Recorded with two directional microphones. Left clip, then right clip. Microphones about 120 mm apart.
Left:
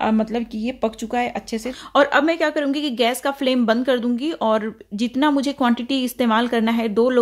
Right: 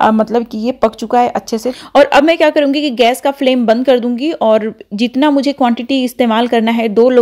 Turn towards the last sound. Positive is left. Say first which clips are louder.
# right 8 dB
turn(degrees=-30)  # may be behind; listen again after turning